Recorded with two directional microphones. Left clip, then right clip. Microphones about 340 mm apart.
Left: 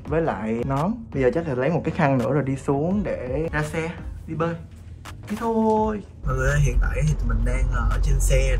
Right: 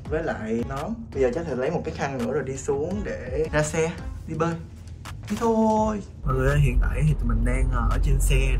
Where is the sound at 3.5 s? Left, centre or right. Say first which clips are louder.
Right 3 dB; centre.